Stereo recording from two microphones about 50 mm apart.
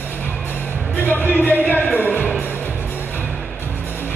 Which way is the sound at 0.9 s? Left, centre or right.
Left.